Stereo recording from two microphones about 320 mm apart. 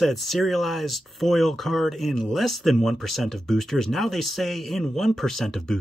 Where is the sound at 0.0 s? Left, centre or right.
Centre.